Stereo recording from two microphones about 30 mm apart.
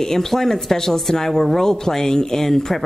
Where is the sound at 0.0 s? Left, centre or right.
Centre.